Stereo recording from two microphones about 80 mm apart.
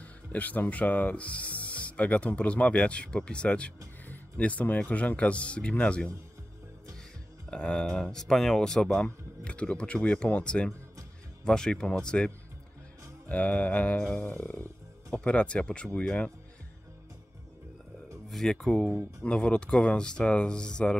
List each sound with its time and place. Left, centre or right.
0.3 s speech: centre
7.5 s speech: centre
13.3 s speech: centre
18.3 s speech: centre